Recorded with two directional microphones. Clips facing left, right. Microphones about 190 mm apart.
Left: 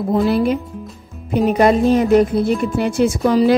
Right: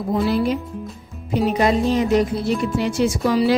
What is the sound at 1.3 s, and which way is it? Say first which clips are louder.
A woman's voice: left 4 dB; 50° left (ahead or behind).